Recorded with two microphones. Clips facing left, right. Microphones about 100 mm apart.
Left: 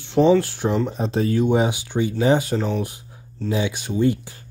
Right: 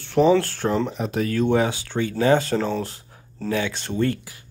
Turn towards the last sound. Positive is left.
turn(degrees=10)  # may be behind; listen again after turning